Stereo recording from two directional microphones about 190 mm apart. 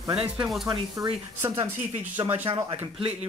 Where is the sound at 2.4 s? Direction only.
30° right (ahead or behind).